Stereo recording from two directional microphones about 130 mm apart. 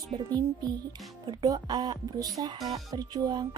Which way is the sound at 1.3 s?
35° right (ahead or behind).